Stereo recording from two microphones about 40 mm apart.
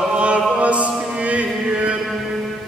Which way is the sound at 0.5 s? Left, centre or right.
Right.